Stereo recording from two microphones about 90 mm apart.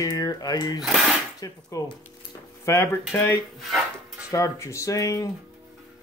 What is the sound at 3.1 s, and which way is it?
Speech, 20° left (ahead or behind).